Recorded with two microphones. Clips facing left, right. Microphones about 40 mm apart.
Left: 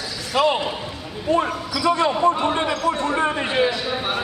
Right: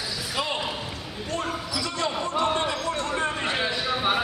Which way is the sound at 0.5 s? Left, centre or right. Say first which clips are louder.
Left 7 dB; centre.